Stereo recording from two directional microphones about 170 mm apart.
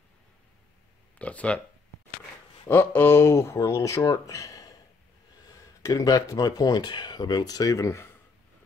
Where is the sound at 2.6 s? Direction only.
10° left (ahead or behind).